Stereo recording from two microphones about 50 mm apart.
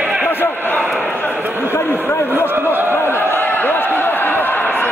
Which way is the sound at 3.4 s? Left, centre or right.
Left.